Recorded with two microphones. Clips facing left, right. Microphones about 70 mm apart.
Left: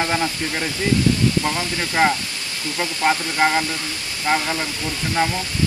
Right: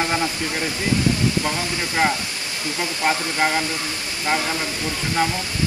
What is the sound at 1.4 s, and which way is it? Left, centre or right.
Speech, left.